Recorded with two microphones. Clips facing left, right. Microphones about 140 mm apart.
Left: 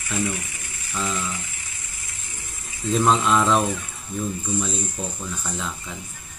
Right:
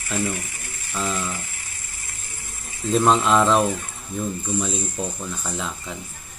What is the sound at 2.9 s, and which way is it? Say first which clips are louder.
Speech: right 2 dB; centre (ahead or behind).